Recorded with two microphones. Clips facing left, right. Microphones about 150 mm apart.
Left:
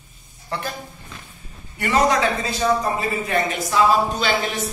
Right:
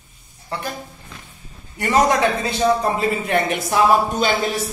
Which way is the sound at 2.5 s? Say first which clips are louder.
Right 2 dB; 65° right (ahead or behind).